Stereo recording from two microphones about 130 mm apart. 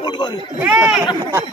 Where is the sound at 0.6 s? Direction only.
10° right (ahead or behind).